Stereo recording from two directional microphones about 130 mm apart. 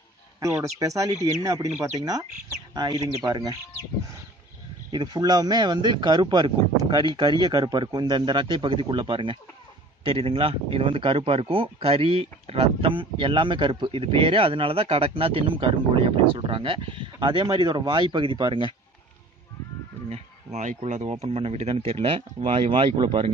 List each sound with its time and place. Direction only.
0.4 s speech: 25° right (ahead or behind)
4.9 s speech: 35° right (ahead or behind)
20.1 s speech: 60° right (ahead or behind); by 23.3 s 40° right (ahead or behind)